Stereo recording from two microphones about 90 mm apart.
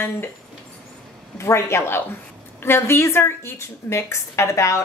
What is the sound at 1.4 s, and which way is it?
A woman's voice, 30° left (ahead or behind).